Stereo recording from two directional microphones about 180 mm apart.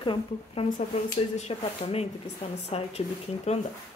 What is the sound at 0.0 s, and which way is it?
A woman's voice, 30° left (ahead or behind).